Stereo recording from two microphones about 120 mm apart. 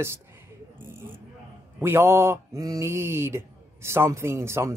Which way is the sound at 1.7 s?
20° right (ahead or behind).